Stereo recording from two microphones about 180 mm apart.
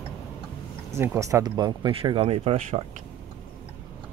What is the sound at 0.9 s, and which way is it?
Speech, 15° right (ahead or behind).